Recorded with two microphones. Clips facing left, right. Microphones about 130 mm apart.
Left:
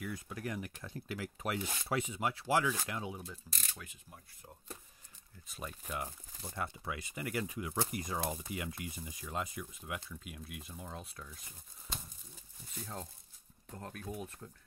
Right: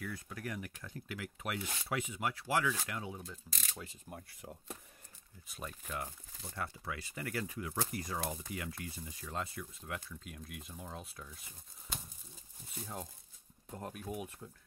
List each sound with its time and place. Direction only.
0.0 s speech: 20° left (ahead or behind)
3.7 s speech: 35° right (ahead or behind)
4.1 s speech: 80° right
5.5 s speech: 5° left (ahead or behind); by 14.5 s 10° right (ahead or behind)